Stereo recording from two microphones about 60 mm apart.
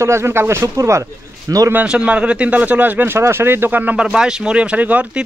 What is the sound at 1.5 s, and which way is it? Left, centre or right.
Speech, right.